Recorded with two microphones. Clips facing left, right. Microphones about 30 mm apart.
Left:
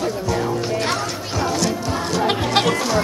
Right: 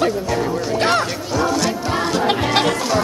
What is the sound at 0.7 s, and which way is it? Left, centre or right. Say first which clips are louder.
Speech: right 9 dB; right.